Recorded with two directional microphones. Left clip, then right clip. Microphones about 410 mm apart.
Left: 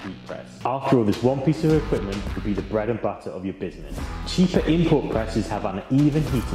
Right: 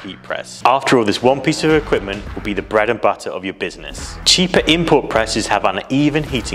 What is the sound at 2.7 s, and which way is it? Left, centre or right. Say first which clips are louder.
Speech: right 11 dB; centre.